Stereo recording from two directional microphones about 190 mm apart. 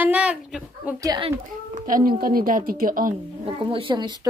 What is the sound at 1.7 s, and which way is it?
A woman's voice, 45° right (ahead or behind).